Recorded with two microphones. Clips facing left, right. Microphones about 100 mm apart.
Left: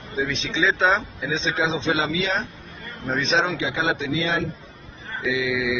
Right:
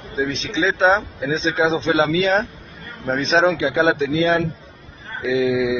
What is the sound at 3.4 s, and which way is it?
Speech, 55° right (ahead or behind).